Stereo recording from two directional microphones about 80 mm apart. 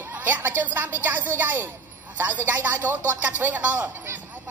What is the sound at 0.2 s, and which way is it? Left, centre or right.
A woman's voice, right.